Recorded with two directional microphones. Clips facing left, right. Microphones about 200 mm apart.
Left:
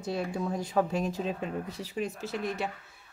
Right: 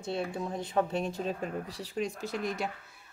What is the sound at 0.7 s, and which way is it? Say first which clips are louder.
A woman's voice: left 1 dB; 5° left (ahead or behind).